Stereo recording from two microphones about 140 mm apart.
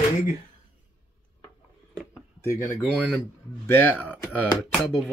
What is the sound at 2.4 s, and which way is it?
Speech, 20° left (ahead or behind).